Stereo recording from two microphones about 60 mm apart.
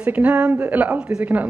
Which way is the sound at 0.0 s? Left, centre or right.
Right.